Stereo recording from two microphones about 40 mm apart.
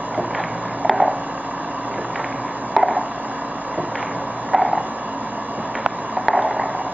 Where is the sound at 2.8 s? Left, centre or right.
Centre.